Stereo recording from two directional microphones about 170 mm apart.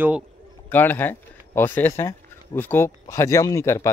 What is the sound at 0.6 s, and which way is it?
Speech, 10° left (ahead or behind).